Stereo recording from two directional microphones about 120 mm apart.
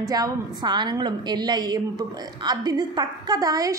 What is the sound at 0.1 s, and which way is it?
A woman's voice, 35° right (ahead or behind).